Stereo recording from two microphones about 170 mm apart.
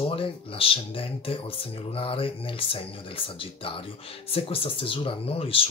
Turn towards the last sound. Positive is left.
turn(degrees=35)  # may be behind; listen again after turning